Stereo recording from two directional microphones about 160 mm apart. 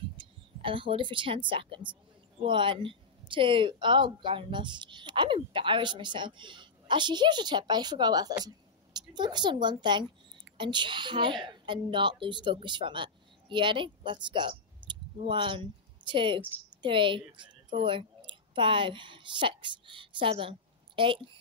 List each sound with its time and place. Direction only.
0.2 s a woman's voice: 30° right (ahead or behind)